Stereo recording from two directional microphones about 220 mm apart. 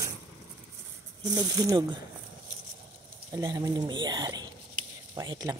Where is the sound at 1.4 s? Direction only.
15° right (ahead or behind).